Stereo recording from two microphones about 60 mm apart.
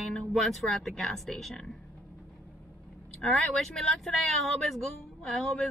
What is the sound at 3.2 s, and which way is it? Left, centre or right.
Speech, centre.